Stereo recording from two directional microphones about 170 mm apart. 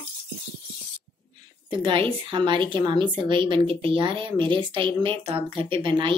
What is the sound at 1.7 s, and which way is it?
A woman's voice, 30° right (ahead or behind).